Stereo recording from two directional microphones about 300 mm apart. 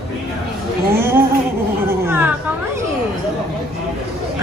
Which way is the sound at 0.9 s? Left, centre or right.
Centre.